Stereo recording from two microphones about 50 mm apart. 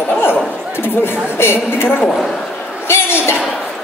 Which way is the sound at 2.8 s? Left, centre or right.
Left.